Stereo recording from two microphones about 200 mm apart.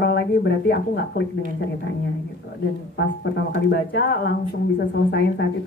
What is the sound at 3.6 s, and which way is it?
Speech, 55° left (ahead or behind).